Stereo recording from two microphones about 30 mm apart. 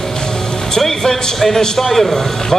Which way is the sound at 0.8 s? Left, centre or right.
Centre.